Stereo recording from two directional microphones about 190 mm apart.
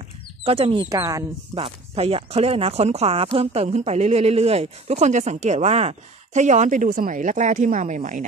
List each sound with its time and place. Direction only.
0.5 s speech: 30° right (ahead or behind)
0.8 s speech: 15° right (ahead or behind)
1.6 s speech: 30° right (ahead or behind)